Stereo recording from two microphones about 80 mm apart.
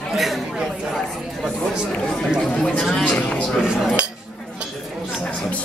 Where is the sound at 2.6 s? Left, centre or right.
Centre.